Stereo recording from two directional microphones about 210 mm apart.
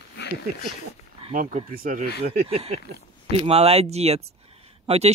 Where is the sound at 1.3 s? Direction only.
40° right (ahead or behind).